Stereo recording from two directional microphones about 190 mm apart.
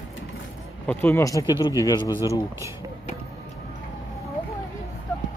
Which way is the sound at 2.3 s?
15° right (ahead or behind).